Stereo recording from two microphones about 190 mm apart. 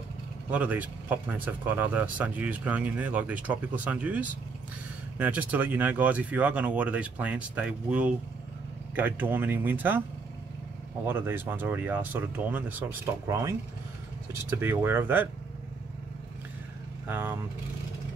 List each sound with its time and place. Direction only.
0.5 s speech: 10° right (ahead or behind)
11.1 s speech: 10° right (ahead or behind)
17.1 s speech: 10° right (ahead or behind)